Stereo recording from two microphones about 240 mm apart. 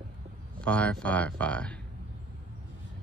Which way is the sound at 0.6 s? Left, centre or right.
Centre.